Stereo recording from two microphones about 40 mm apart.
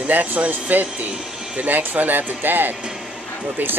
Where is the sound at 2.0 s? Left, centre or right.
Right.